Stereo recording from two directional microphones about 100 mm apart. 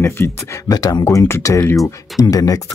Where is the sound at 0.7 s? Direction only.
40° left (ahead or behind).